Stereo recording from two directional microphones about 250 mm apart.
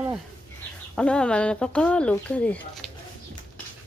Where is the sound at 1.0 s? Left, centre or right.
Centre.